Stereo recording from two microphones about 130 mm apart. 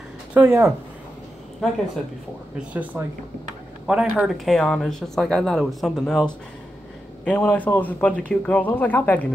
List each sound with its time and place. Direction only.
0.3 s speech: 15° right (ahead or behind)
1.6 s speech: centre (ahead or behind)
2.7 s speech: 10° right (ahead or behind); by 9.3 s 15° left (ahead or behind)